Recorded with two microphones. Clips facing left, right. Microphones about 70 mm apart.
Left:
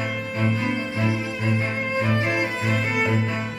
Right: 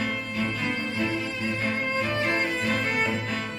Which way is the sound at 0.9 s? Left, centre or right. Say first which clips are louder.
Left 3 dB; centre.